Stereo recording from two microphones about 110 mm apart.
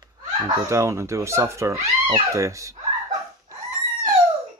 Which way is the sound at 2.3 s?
30° right (ahead or behind).